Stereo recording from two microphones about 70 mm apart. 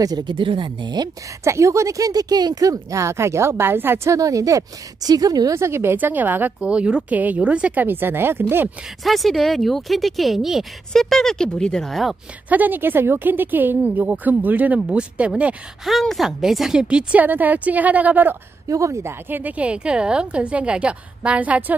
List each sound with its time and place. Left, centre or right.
0.0 s speech: right
1.4 s speech: right
4.1 s speech: right
5.5 s a woman's voice: right
6.6 s a woman's voice: centre; by 8.6 s right
9.0 s speech: centre
12.4 s a woman's voice: right
15.8 s speech: centre
16.8 s a woman's voice: centre
18.7 s speech: right
19.2 s a woman's voice: right